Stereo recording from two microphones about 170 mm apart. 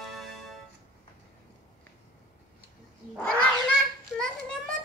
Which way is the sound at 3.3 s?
5° left (ahead or behind).